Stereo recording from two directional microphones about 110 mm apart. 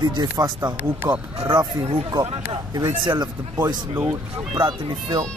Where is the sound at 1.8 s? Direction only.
45° right (ahead or behind).